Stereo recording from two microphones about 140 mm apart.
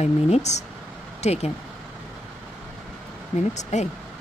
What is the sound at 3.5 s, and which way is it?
Speech, 55° left (ahead or behind).